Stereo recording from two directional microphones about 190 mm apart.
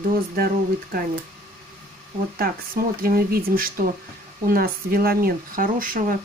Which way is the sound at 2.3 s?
50° right (ahead or behind).